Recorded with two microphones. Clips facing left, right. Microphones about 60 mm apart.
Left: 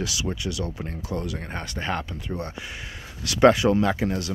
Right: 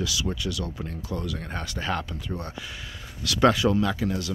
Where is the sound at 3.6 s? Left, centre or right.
Left.